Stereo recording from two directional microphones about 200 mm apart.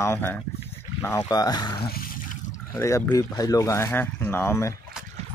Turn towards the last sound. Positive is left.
turn(degrees=10)  # may be behind; listen again after turning